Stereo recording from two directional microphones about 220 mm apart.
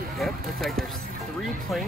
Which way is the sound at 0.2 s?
Centre (ahead or behind).